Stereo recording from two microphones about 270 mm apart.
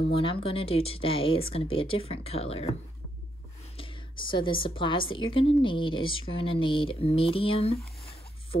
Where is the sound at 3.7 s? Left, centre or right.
Centre.